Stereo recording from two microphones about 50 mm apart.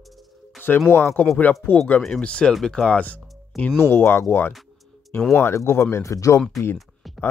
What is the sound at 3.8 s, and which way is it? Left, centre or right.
Speech, left.